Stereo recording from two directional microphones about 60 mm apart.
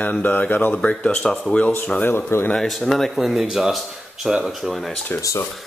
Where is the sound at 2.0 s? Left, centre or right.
Left.